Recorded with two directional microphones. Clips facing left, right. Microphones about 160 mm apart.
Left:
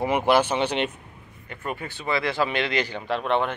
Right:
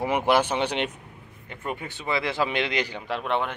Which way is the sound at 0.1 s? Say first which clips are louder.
Left 1 dB; 10° left (ahead or behind).